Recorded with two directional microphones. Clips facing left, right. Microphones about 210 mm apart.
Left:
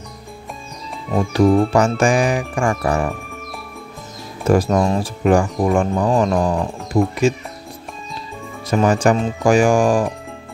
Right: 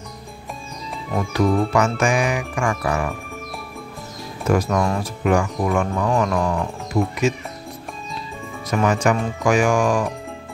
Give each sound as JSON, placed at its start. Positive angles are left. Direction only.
{"t": 1.1, "sound": "speech", "side_deg": 30}
{"t": 4.5, "sound": "speech", "side_deg": 30}
{"t": 8.6, "sound": "speech", "side_deg": 30}